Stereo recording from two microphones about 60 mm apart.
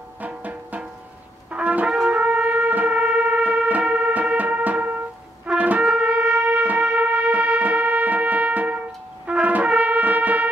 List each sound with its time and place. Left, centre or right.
0.2 s music: right